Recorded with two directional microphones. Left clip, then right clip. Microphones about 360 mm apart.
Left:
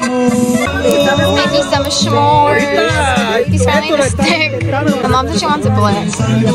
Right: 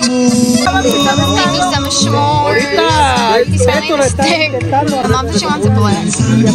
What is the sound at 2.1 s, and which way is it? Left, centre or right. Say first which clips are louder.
Speech: left 3 dB; centre.